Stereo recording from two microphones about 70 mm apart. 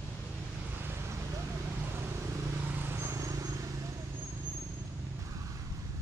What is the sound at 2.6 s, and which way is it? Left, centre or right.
Vehicle, right.